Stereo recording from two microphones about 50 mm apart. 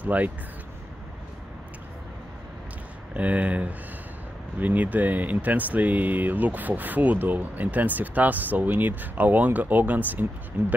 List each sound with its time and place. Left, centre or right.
0.0 s speech: right
3.2 s speech: right
10.6 s speech: right